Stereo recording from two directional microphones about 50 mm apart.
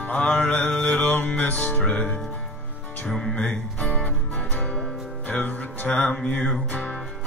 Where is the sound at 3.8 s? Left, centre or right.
Left.